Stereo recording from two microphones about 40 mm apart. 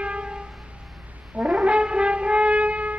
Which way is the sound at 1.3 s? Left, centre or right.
Right.